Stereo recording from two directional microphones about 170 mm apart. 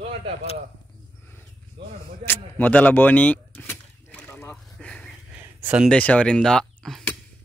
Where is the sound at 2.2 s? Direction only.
10° left (ahead or behind).